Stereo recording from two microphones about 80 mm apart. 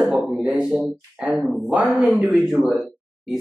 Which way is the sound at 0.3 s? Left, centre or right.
Centre.